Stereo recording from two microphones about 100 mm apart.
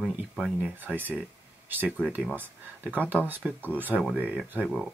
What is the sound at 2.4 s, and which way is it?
Speech, 20° right (ahead or behind).